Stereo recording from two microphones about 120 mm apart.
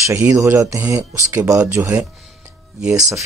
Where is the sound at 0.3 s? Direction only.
25° right (ahead or behind).